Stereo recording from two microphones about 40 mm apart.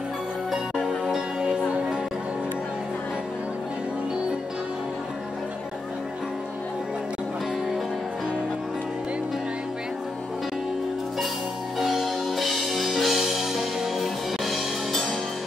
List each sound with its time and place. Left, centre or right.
1.0 s music: centre
11.8 s music: centre